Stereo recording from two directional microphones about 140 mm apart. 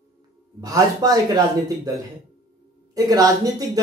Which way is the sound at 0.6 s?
25° right (ahead or behind).